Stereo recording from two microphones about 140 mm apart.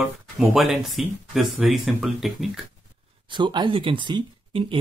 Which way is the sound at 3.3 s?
35° right (ahead or behind).